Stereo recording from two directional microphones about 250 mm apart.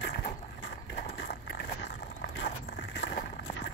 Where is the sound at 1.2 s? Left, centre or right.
Left.